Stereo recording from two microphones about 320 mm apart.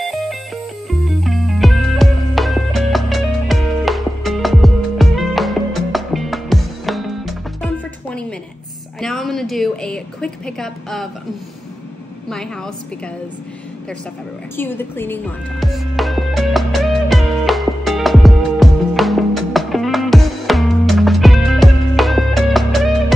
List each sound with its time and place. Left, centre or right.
0.0 s music: centre
9.0 s a woman's voice: centre
14.6 s a woman's voice: centre
15.6 s music: centre